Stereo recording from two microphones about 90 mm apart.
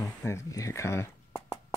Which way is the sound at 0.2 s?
35° left (ahead or behind).